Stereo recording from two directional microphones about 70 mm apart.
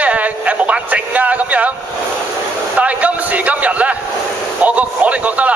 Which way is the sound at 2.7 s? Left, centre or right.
Right.